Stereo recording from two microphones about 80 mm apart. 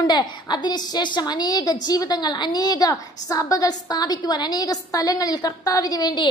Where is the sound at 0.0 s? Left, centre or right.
Left.